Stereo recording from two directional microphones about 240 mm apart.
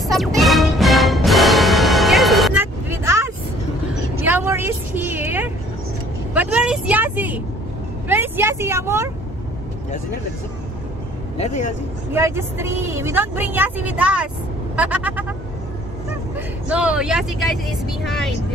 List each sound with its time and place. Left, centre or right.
0.0 s music: centre
4.2 s vehicle: centre
11.3 s speech: left
12.1 s a woman's voice: centre
16.3 s speech: centre